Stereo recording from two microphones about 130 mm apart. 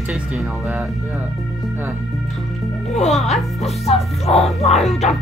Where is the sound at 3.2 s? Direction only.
55° left (ahead or behind).